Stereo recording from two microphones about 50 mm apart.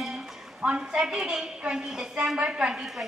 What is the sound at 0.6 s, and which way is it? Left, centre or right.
A woman's voice, centre.